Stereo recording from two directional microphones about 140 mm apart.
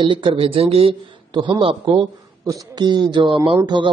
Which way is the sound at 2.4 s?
25° right (ahead or behind).